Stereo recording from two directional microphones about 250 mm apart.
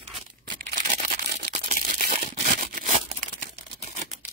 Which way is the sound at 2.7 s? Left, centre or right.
Right.